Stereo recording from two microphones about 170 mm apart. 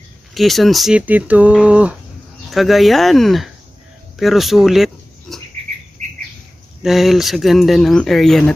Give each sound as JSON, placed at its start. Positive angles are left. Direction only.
{"t": 0.3, "sound": "speech", "side_deg": 0}
{"t": 6.0, "sound": "bird", "side_deg": -45}
{"t": 6.8, "sound": "speech", "side_deg": 0}